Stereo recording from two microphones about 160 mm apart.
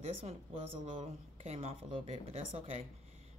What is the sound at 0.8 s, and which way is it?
Speech, 45° right (ahead or behind).